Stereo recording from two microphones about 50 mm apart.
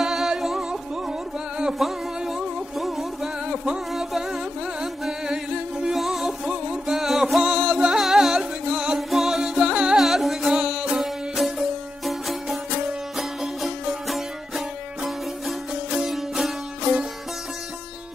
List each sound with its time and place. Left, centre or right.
0.0 s music: centre
6.4 s music: centre
9.1 s music: centre
9.9 s music: centre
10.5 s music: centre
16.1 s music: centre